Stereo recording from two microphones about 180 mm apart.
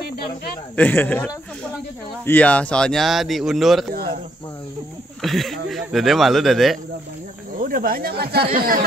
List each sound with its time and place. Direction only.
0.7 s speech: 10° left (ahead or behind)
5.2 s speech: centre (ahead or behind)
7.5 s speech: 50° right (ahead or behind)